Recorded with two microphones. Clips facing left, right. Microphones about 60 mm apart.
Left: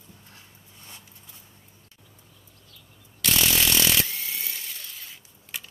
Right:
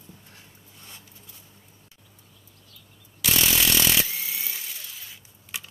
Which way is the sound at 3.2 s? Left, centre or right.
Centre.